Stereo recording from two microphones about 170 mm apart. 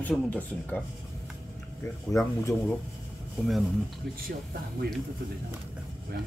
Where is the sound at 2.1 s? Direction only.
20° left (ahead or behind).